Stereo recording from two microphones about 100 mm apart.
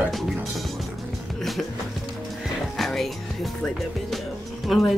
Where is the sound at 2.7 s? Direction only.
Centre (ahead or behind).